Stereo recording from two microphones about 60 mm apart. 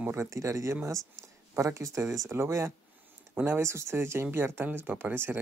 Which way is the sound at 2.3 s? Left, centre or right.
Right.